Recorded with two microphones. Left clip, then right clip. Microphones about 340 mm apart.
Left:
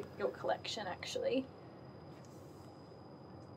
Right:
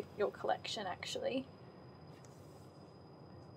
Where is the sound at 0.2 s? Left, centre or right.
Centre.